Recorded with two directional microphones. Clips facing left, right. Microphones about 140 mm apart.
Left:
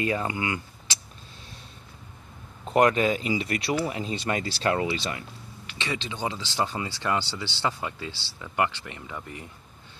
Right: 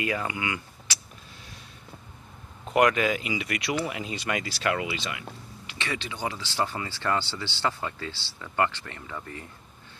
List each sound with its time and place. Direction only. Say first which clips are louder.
0.0 s speech: left 2 dB; 30° left (ahead or behind)
2.7 s speech: left 1 dB; 30° left (ahead or behind)
5.8 s speech: left 1 dB; 20° left (ahead or behind)